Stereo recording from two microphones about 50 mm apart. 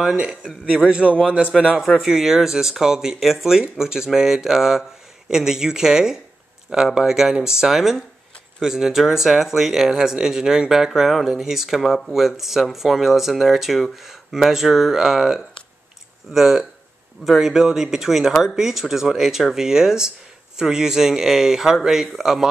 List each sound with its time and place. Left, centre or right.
0.7 s a man's voice: centre
2.0 s speech: centre
10.9 s speech: centre